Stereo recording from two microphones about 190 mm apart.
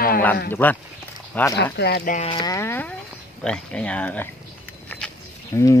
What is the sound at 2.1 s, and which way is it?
Speech, 25° left (ahead or behind).